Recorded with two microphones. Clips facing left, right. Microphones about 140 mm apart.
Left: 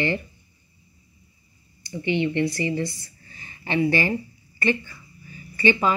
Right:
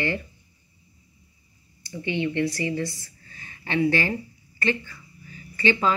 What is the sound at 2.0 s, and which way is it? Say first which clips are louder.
Speech: left 2 dB; 20° left (ahead or behind).